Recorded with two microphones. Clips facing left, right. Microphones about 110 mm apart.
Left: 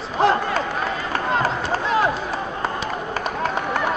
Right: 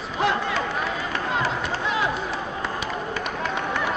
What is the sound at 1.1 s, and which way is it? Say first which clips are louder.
Run: left 5 dB; 45° left (ahead or behind).